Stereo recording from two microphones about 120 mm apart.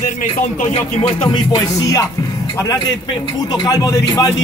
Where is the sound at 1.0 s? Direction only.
45° left (ahead or behind).